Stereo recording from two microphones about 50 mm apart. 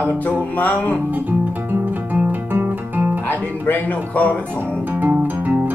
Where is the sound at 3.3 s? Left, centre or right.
Left.